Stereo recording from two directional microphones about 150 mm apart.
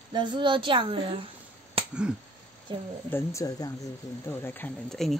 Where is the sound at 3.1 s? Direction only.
20° left (ahead or behind); by 5.2 s 5° left (ahead or behind).